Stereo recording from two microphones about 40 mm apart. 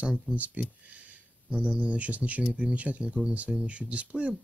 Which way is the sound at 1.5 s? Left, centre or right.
Right.